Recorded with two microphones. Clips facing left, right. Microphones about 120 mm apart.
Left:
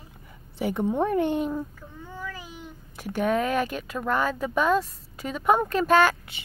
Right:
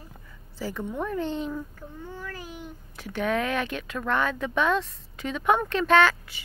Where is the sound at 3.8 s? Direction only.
10° left (ahead or behind).